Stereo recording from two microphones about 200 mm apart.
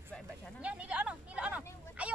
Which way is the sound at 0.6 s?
5° right (ahead or behind).